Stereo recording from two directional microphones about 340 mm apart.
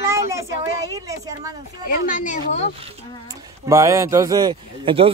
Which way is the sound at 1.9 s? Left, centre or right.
Left.